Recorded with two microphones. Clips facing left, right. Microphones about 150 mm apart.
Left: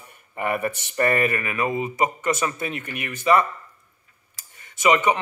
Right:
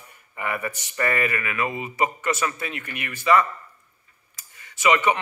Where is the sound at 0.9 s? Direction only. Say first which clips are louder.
Left 3 dB; 35° left (ahead or behind).